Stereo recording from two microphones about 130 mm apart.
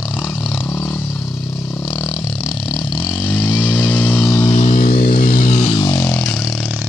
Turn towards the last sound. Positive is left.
turn(degrees=15)  # may be behind; listen again after turning